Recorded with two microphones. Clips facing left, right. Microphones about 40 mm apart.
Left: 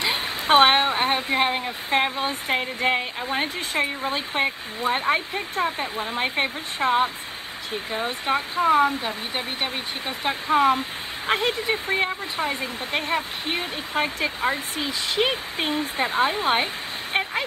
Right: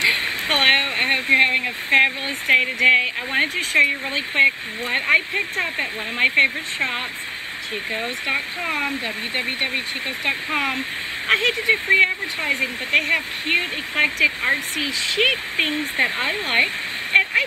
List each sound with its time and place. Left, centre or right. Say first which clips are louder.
0.0 s a sound: right 5 dB; right
1.6 s speech: right 6 dB; right
8.3 s speech: left 6 dB; right